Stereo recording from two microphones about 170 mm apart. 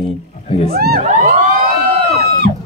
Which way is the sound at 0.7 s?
65° right (ahead or behind).